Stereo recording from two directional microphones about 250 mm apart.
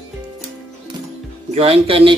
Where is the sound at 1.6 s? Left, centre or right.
Right.